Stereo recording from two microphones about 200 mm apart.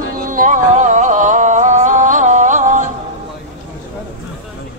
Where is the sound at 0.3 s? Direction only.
40° right (ahead or behind).